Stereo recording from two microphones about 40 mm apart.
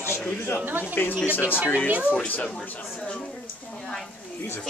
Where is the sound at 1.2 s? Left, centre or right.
Left.